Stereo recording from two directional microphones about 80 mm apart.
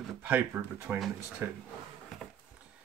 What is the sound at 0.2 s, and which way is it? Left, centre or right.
Speech, right.